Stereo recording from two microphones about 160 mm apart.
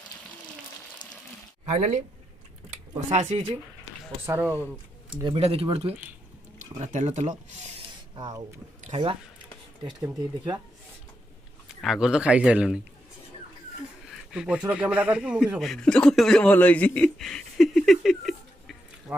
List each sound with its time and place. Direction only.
1.7 s speech: 45° right (ahead or behind)
4.3 s a man's voice: 15° right (ahead or behind)
5.1 s speech: 30° right (ahead or behind)
6.6 s speech: 50° right (ahead or behind)
8.2 s speech: 25° right (ahead or behind)
8.8 s a sound: 40° right (ahead or behind)
11.8 s a man's voice: centre (ahead or behind)
14.0 s speech: 5° right (ahead or behind)
19.1 s a sound: 10° right (ahead or behind)